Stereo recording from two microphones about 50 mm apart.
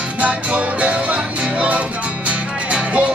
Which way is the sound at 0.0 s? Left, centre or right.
Right.